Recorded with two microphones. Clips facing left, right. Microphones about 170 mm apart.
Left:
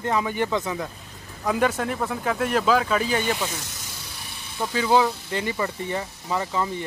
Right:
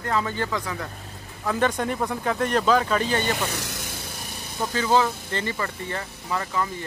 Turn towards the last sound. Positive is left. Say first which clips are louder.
# left 2 dB
turn(degrees=20)  # may be behind; listen again after turning